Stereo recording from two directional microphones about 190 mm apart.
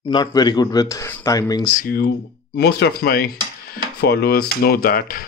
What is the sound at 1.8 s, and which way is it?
Speech, 50° left (ahead or behind).